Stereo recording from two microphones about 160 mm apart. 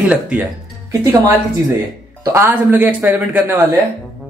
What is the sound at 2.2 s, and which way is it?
Speech, 15° right (ahead or behind).